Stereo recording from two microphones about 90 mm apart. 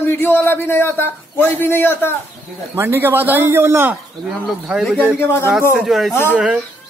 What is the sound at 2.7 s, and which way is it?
Speech, 25° right (ahead or behind).